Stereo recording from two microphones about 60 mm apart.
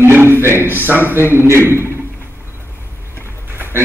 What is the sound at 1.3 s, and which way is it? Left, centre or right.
Speech, right.